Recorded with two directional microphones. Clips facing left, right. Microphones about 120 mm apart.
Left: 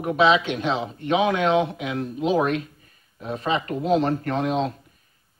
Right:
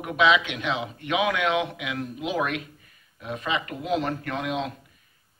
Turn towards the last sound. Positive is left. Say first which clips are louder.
# left 5 dB
turn(degrees=35)  # may be behind; listen again after turning